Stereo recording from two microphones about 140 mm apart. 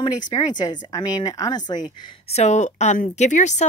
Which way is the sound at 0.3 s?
30° left (ahead or behind).